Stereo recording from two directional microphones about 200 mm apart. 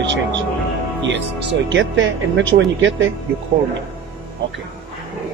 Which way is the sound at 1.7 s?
65° right (ahead or behind).